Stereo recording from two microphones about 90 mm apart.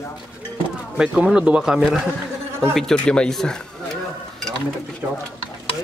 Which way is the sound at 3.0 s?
10° left (ahead or behind).